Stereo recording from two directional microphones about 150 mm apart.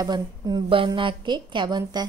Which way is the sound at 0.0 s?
25° right (ahead or behind).